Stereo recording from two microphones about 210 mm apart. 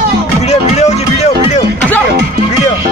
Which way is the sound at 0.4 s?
30° left (ahead or behind).